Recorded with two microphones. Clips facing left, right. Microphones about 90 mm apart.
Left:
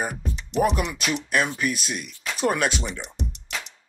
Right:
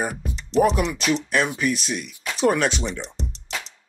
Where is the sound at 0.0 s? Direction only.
Centre (ahead or behind).